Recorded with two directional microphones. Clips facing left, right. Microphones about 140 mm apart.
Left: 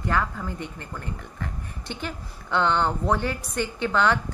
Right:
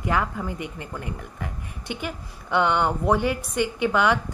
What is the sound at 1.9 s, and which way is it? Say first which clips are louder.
A woman's voice: right 2 dB; 10° right (ahead or behind).